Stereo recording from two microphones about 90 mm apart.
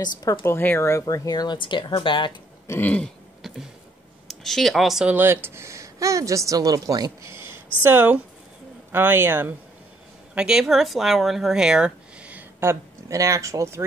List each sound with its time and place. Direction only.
0.0 s speech: 45° left (ahead or behind)
0.4 s speech: 25° left (ahead or behind)
1.0 s speech: 45° left (ahead or behind)
1.6 s speech: 65° left (ahead or behind)
2.8 s throat clearing: 15° left (ahead or behind)
3.4 s a sound: centre (ahead or behind)
4.3 s speech: 5° left (ahead or behind)
5.0 s speech: 25° right (ahead or behind); by 7.1 s 45° right (ahead or behind)
7.2 s a sound: 25° right (ahead or behind)
8.9 s a man's voice: 25° right (ahead or behind)
10.3 s speech: 10° right (ahead or behind)
13.1 s speech: 35° right (ahead or behind)